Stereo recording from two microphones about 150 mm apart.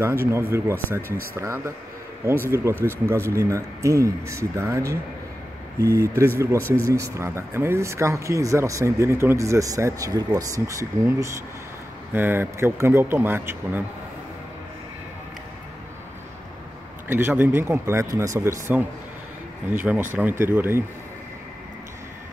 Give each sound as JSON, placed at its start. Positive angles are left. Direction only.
{"t": 0.0, "sound": "a man's voice", "side_deg": -15}
{"t": 2.7, "sound": "a man's voice", "side_deg": -15}
{"t": 17.1, "sound": "a man's voice", "side_deg": -15}